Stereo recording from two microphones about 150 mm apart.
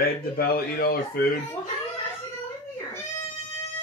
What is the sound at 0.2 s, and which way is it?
Speech, 90° left.